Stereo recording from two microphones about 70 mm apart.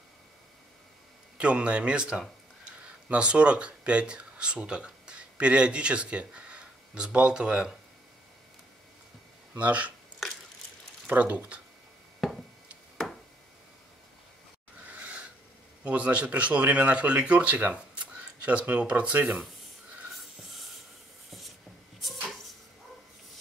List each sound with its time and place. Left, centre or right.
1.4 s speech: centre
9.6 s speech: right
11.1 s speech: right
14.9 s a sound: centre
15.8 s speech: centre
20.2 s a sound: centre